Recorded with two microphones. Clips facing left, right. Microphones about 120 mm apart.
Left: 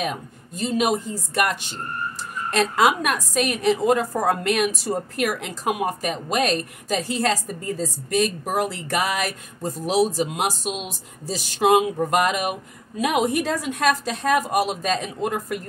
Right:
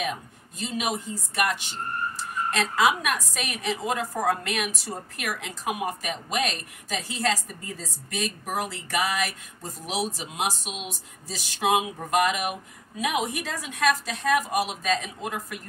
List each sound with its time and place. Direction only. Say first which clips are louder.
0.0 s a woman's voice: left 3 dB; 45° left (ahead or behind)
11.2 s speech: left 8 dB; 35° left (ahead or behind)
11.6 s a woman's voice: left 7 dB; 50° left (ahead or behind)